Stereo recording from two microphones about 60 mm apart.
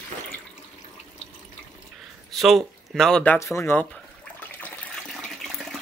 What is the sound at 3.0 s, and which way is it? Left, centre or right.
Speech, centre.